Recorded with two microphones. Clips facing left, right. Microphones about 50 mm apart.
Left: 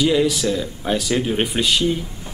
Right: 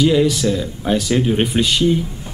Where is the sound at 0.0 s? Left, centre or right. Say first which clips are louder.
Right 3 dB; centre.